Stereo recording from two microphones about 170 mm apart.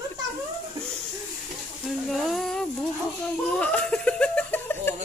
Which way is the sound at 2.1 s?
Centre (ahead or behind).